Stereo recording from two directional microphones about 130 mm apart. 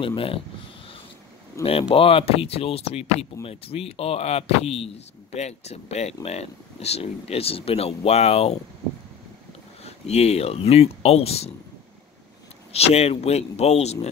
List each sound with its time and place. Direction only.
0.0 s speech: 45° left (ahead or behind)
1.6 s speech: 50° left (ahead or behind)
9.8 s speech: 55° left (ahead or behind)
12.7 s speech: 55° left (ahead or behind)